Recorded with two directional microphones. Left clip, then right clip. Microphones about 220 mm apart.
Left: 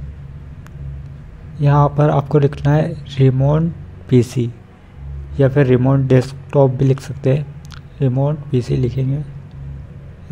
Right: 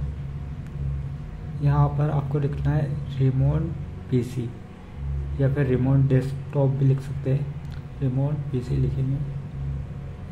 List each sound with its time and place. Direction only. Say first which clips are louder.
1.6 s speech: left 12 dB; 40° left (ahead or behind)